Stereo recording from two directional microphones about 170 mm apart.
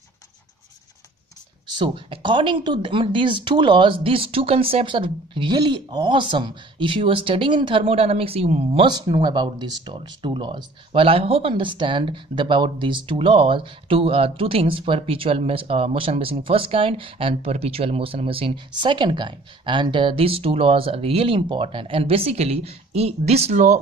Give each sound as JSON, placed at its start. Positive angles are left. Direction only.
{"t": 1.8, "sound": "speech", "side_deg": -30}